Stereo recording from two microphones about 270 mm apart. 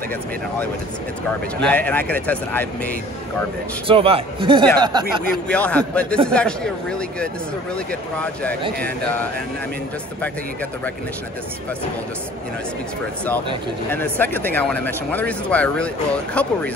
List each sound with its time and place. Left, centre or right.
1.6 s a man's voice: centre
3.8 s a man's voice: centre
5.5 s a man's voice: centre
13.8 s a man's voice: centre